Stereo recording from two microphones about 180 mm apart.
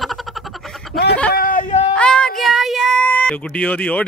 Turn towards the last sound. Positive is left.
turn(degrees=10)  # may be behind; listen again after turning